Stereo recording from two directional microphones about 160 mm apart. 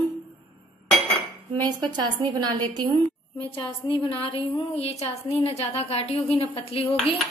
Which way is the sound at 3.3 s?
30° left (ahead or behind).